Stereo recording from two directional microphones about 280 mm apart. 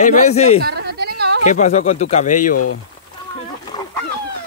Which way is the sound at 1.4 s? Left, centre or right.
Left.